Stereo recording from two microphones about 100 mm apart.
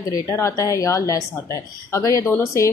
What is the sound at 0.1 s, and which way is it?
A woman's voice, 30° left (ahead or behind).